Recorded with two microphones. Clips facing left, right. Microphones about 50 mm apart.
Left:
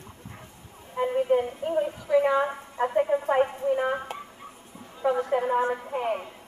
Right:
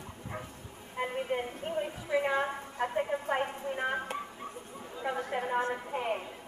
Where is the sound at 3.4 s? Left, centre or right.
Centre.